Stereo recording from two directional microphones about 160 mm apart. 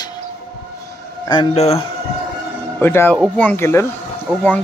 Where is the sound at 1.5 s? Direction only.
40° left (ahead or behind).